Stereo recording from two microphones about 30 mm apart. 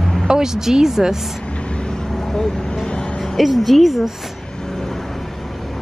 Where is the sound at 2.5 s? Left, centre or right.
Left.